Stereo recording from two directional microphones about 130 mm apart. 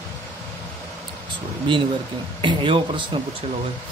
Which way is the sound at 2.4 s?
40° right (ahead or behind).